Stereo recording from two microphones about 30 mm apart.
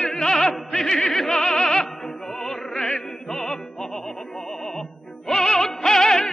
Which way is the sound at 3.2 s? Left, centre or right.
Centre.